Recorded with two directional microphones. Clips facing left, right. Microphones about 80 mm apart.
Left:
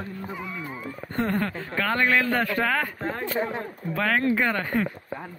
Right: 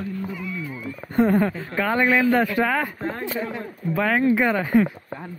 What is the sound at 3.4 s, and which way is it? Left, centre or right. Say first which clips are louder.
Speech: left 1 dB; left.